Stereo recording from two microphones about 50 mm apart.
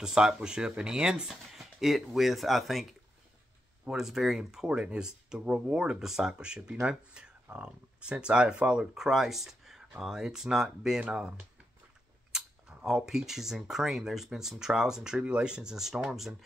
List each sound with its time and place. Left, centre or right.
0.0 s speech: centre
8.9 s speech: centre